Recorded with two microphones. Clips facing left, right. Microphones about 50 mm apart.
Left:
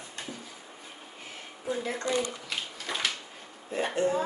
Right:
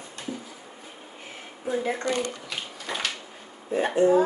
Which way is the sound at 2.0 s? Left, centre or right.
Right.